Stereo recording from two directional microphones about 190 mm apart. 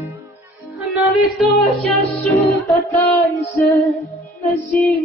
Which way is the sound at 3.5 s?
15° left (ahead or behind).